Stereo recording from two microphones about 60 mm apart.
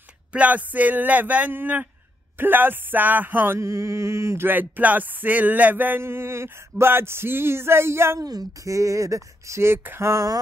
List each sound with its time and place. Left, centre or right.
0.3 s speech: right
2.3 s music: right
3.5 s mantra: right
4.5 s music: right
6.0 s a sound: right
8.2 s speech: right
9.8 s a sound: right